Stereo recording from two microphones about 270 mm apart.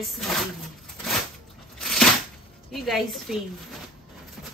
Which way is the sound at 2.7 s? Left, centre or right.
Centre.